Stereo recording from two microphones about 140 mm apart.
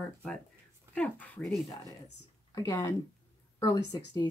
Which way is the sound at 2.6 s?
25° left (ahead or behind).